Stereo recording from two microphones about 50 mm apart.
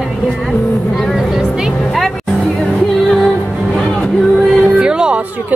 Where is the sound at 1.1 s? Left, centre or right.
Centre.